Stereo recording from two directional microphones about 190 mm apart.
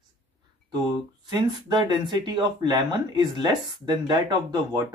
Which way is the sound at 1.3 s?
20° right (ahead or behind).